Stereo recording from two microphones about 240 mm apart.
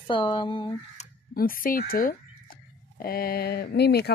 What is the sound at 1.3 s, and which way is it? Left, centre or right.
Speech, left.